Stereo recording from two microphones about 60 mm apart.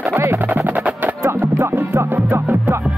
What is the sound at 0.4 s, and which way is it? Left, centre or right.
Music, right.